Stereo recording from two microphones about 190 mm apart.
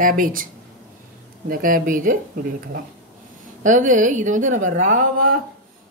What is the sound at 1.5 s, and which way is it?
Speech, 45° right (ahead or behind).